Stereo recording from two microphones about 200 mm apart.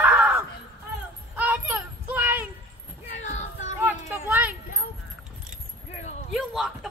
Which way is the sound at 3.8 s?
10° right (ahead or behind).